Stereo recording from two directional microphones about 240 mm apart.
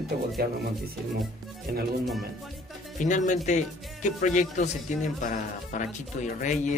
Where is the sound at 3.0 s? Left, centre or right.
Left.